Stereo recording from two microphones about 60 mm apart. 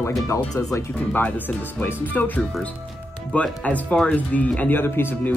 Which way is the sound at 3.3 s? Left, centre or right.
Left.